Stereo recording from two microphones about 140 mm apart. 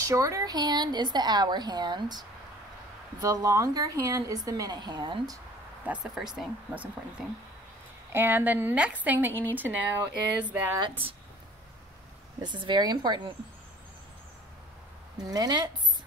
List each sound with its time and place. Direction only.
0.0 s a woman's voice: 25° right (ahead or behind)
5.9 s speech: 5° right (ahead or behind)
8.1 s a woman's voice: 15° right (ahead or behind)
10.8 s speech: 40° right (ahead or behind)
12.4 s speech: 35° right (ahead or behind)
15.1 s a woman's voice: 30° right (ahead or behind)